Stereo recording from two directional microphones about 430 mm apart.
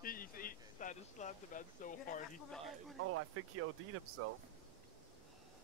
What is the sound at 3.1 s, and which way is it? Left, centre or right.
Speech, right.